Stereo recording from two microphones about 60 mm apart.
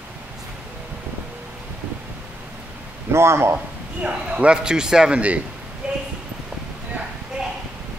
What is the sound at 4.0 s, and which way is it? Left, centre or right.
A man's voice, centre.